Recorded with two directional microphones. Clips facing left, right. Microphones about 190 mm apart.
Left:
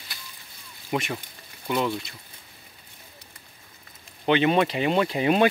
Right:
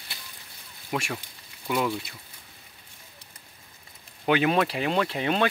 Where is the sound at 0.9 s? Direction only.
5° left (ahead or behind).